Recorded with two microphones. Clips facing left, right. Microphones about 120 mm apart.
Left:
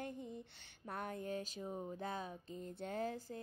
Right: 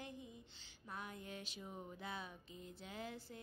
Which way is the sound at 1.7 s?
30° left (ahead or behind).